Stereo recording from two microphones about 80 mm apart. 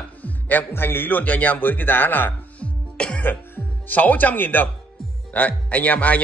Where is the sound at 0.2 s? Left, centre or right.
Left.